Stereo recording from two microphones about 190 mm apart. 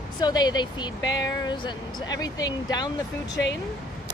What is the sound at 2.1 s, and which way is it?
Speech, 20° left (ahead or behind).